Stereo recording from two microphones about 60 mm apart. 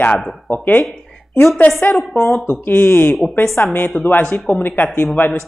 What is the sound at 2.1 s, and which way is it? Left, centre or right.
Speech, left.